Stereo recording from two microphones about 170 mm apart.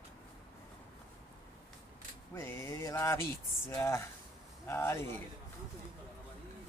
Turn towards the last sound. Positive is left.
turn(degrees=15)  # may be behind; listen again after turning